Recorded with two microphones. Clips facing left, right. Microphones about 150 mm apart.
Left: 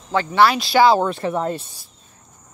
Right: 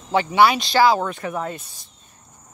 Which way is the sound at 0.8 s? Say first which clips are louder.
Left 3 dB; 30° left (ahead or behind).